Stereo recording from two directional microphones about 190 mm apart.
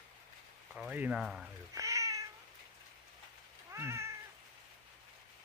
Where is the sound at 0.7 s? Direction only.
5° right (ahead or behind).